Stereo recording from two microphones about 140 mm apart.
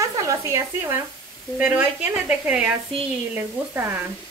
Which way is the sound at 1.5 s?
10° right (ahead or behind).